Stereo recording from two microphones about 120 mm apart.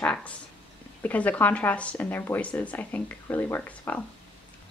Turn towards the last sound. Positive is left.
turn(degrees=15)  # may be behind; listen again after turning